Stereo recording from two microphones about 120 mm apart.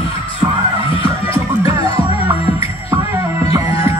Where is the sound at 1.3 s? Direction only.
50° left (ahead or behind).